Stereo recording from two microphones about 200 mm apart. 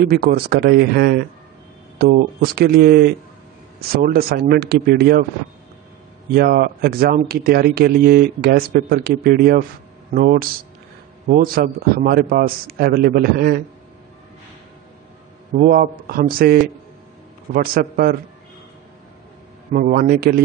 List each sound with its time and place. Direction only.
0.2 s speech: 50° right (ahead or behind)
6.3 s speech: 50° right (ahead or behind)
15.5 s speech: 45° right (ahead or behind)
19.7 s speech: 45° right (ahead or behind)